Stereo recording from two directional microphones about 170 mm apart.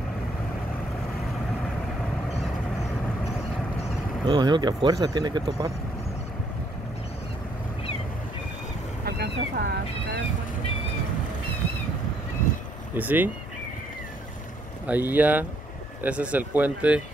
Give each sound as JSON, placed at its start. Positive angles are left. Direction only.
{"t": 4.3, "sound": "speech", "side_deg": -25}
{"t": 9.0, "sound": "boat", "side_deg": -70}
{"t": 12.9, "sound": "speech", "side_deg": -10}
{"t": 14.9, "sound": "speech", "side_deg": -10}